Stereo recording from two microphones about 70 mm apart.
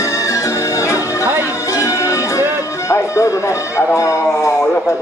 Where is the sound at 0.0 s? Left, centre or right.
Left.